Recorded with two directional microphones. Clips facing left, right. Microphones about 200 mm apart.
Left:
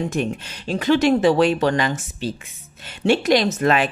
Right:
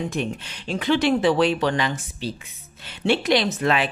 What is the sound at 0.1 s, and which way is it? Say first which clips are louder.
Speech: left 3 dB; 45° left (ahead or behind).